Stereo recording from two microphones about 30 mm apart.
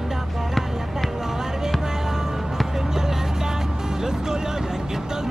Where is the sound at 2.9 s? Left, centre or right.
Centre.